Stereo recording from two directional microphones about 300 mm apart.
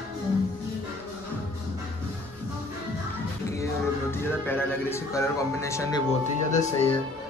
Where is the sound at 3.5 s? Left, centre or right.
Centre.